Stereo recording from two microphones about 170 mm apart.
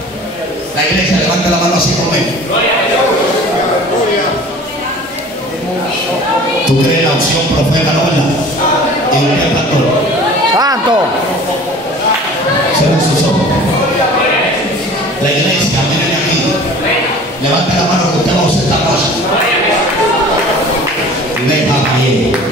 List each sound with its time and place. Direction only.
10.6 s speech: 25° right (ahead or behind)